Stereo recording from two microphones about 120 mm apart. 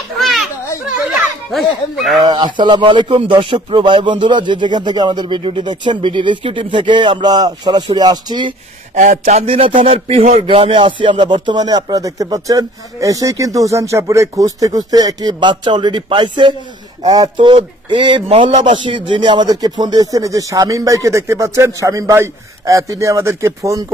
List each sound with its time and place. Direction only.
0.2 s children playing: centre (ahead or behind)
1.1 s speech: centre (ahead or behind)
2.3 s speech: 40° right (ahead or behind)
3.7 s a sound: 40° right (ahead or behind)
8.9 s speech: 80° right
9.5 s speech: 50° right (ahead or behind)
9.8 s a sound: 55° right (ahead or behind)
17.1 s a sound: 30° right (ahead or behind)
17.5 s speech: 45° right (ahead or behind); by 23.8 s 25° right (ahead or behind)